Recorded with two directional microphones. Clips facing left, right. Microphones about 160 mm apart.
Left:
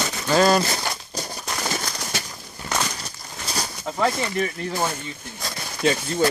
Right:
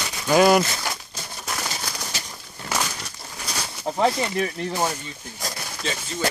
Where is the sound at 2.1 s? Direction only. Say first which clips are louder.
Left 5 dB; 55° left (ahead or behind).